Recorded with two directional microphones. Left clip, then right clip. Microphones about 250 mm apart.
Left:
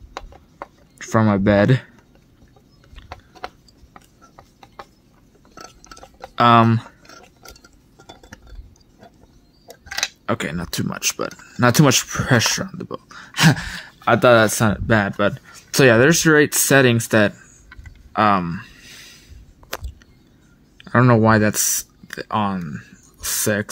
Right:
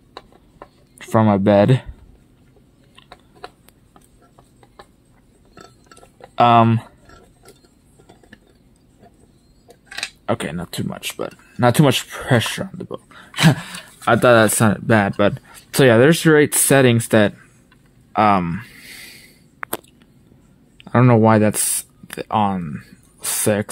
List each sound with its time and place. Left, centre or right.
0.9 s speech: centre
3.1 s a sound: centre
5.5 s chink: centre
6.3 s speech: centre
10.2 s speech: centre
20.7 s speech: centre